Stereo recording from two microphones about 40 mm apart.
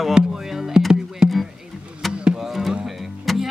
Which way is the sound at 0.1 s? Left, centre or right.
Centre.